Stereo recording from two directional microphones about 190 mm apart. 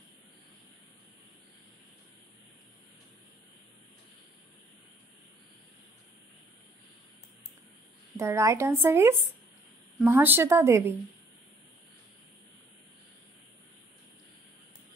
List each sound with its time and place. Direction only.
8.2 s speech: 15° right (ahead or behind)